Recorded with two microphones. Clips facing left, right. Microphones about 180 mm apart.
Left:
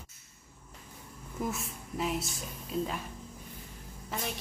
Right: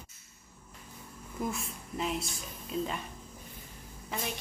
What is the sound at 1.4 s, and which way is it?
A woman's voice, 5° left (ahead or behind).